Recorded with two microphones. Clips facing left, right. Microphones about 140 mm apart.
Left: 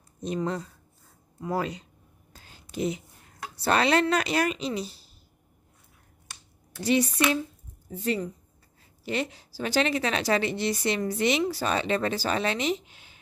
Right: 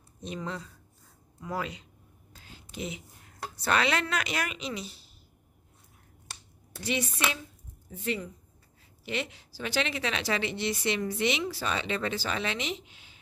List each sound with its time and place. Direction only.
0.2 s speech: 40° left (ahead or behind)
2.3 s a sound: 40° left (ahead or behind)
3.6 s speech: 35° left (ahead or behind)
6.8 s speech: 35° left (ahead or behind)